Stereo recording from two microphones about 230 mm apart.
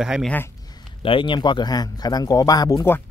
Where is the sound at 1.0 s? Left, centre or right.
Left.